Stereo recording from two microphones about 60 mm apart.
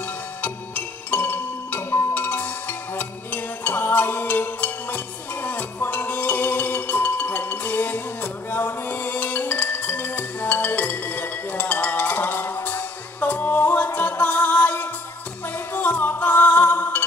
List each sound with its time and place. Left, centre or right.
0.0 s music: left